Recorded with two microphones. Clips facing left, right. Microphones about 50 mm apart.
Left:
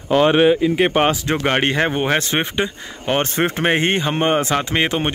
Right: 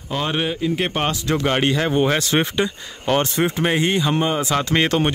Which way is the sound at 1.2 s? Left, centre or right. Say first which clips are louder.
Left 1 dB; left.